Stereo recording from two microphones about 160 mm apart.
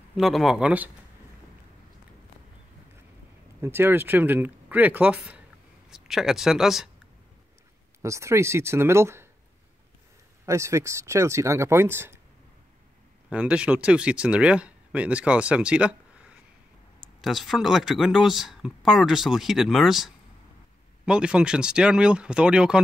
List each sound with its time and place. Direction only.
0.2 s speech: centre (ahead or behind)
3.6 s speech: 15° right (ahead or behind)
8.0 s speech: 20° right (ahead or behind)
10.4 s speech: 20° right (ahead or behind)
13.3 s speech: 5° right (ahead or behind)
17.2 s speech: centre (ahead or behind)